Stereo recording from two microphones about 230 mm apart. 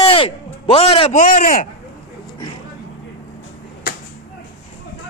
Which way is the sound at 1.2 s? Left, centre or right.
Left.